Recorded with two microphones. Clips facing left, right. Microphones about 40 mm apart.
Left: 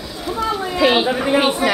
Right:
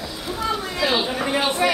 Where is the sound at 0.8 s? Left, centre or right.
Left.